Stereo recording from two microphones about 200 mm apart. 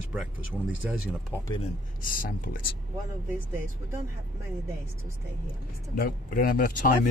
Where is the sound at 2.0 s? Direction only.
45° left (ahead or behind).